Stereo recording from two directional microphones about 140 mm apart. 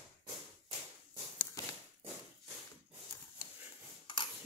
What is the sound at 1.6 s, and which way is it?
Walk, 25° left (ahead or behind).